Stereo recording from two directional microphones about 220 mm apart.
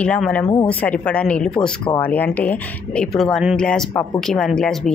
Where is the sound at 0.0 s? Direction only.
5° left (ahead or behind).